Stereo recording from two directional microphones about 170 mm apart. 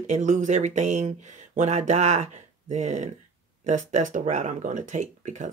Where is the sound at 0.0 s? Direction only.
45° right (ahead or behind).